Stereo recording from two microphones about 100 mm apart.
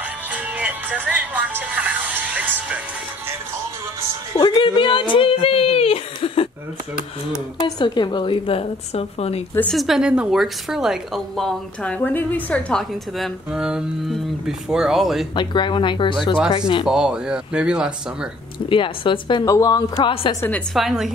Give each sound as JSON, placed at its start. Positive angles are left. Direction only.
{"t": 0.3, "sound": "speech", "side_deg": -15}
{"t": 4.4, "sound": "speech", "side_deg": 50}
{"t": 7.6, "sound": "a woman's voice", "side_deg": 45}
{"t": 9.7, "sound": "a woman's voice", "side_deg": 0}
{"t": 11.8, "sound": "a woman's voice", "side_deg": 15}
{"t": 13.5, "sound": "a woman's voice", "side_deg": -10}
{"t": 15.3, "sound": "speech", "side_deg": 50}
{"t": 16.8, "sound": "speech", "side_deg": -5}
{"t": 18.7, "sound": "a woman's voice", "side_deg": 55}
{"t": 19.4, "sound": "speech", "side_deg": 35}
{"t": 20.3, "sound": "speech", "side_deg": 55}
{"t": 20.7, "sound": "a woman's voice", "side_deg": -5}